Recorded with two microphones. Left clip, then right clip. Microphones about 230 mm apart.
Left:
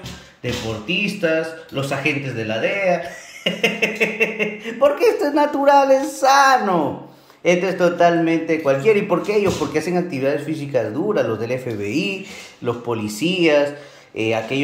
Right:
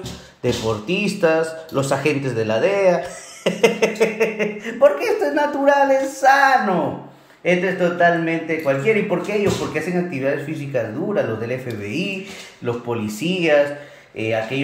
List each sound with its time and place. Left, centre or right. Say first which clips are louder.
0.4 s speech: right 4 dB; centre
4.2 s speech: even; centre
7.6 s speech: even; centre
12.6 s speech: left 1 dB; centre